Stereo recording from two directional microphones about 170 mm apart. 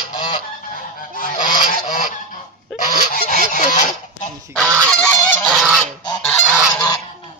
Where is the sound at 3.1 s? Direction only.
45° left (ahead or behind).